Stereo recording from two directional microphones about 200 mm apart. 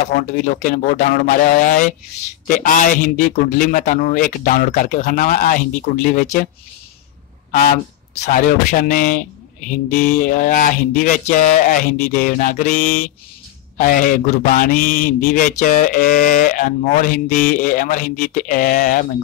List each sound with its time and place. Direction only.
0.4 s a man's voice: 40° left (ahead or behind)
7.5 s a man's voice: 45° left (ahead or behind)